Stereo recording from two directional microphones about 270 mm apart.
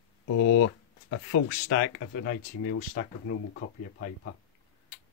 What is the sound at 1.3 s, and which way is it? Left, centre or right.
Speech, left.